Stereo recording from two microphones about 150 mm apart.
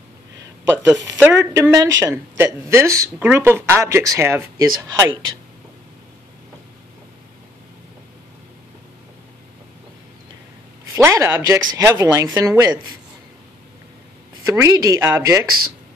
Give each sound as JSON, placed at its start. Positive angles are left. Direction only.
{"t": 0.7, "sound": "a woman's voice", "side_deg": -20}
{"t": 10.9, "sound": "a woman's voice", "side_deg": -20}
{"t": 14.4, "sound": "a woman's voice", "side_deg": -20}